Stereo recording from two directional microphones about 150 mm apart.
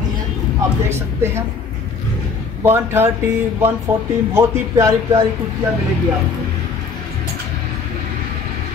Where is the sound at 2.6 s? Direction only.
15° right (ahead or behind).